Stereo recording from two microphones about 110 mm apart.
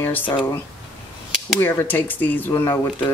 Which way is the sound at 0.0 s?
15° left (ahead or behind).